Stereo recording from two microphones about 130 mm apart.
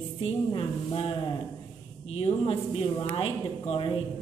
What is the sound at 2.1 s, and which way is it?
A woman's voice, 50° left (ahead or behind).